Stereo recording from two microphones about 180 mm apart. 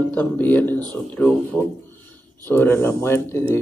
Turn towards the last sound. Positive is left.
turn(degrees=15)  # may be behind; listen again after turning